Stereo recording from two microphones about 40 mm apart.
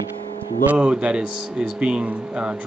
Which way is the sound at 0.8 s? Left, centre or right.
Right.